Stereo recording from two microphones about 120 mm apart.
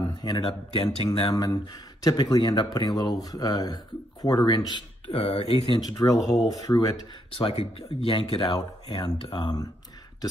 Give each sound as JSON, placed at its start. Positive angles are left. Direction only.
{"t": 0.0, "sound": "a man's voice", "side_deg": 35}
{"t": 0.9, "sound": "speech", "side_deg": 45}
{"t": 1.3, "sound": "speech", "side_deg": 30}
{"t": 6.1, "sound": "speech", "side_deg": 0}
{"t": 6.5, "sound": "speech", "side_deg": 30}
{"t": 7.3, "sound": "speech", "side_deg": 50}